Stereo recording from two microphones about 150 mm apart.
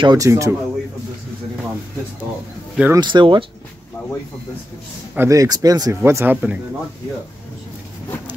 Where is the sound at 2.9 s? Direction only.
30° right (ahead or behind).